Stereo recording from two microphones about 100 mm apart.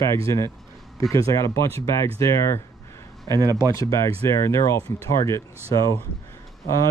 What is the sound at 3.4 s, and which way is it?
Speech, 40° right (ahead or behind).